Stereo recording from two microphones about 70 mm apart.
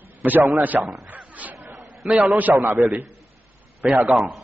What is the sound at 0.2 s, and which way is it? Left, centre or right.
Speech, right.